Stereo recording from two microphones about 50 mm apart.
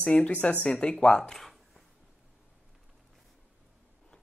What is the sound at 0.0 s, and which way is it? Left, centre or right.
Speech, left.